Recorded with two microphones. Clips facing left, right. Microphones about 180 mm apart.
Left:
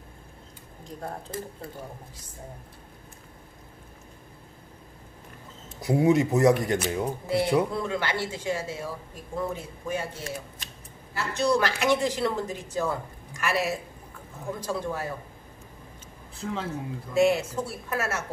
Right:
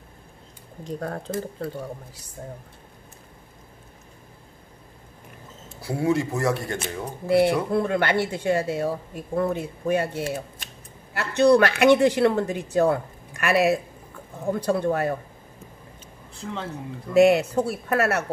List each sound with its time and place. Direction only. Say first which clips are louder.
0.8 s speech: right 7 dB; 75° right (ahead or behind)
5.8 s speech: left 2 dB; 20° left (ahead or behind)
7.2 s speech: right 5 dB; 60° right (ahead or behind)
16.3 s speech: left 1 dB; centre (ahead or behind)
17.1 s speech: right 6 dB; 65° right (ahead or behind)